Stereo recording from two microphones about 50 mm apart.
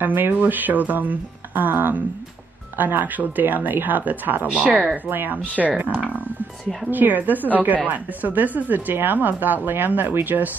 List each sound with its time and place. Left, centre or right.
0.0 s speech: right
4.6 s speech: right
5.1 s speech: right
6.9 s speech: right